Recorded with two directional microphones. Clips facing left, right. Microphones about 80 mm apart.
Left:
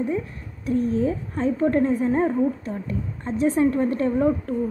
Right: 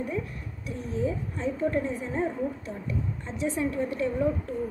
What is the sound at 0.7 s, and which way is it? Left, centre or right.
A woman's voice, left.